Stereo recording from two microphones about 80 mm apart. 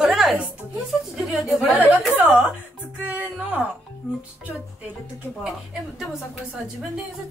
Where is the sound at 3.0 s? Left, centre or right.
Right.